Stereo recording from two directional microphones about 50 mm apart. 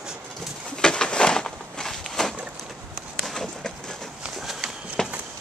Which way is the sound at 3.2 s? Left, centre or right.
Centre.